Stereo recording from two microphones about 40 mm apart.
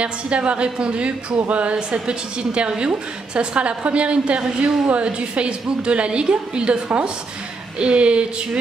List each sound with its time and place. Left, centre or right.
0.0 s a woman's voice: right
7.8 s a woman's voice: right